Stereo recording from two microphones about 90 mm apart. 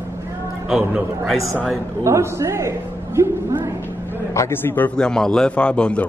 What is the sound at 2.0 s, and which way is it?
A man's voice, 30° right (ahead or behind).